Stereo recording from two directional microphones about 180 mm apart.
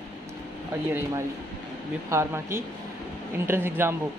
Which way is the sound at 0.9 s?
15° right (ahead or behind).